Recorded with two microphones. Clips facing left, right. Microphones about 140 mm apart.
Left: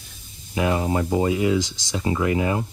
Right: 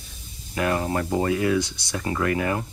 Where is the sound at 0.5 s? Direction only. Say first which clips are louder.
Left 2 dB; 15° left (ahead or behind).